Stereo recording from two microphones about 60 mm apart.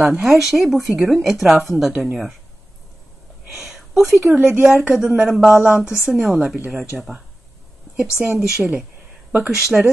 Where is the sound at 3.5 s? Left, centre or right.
Centre.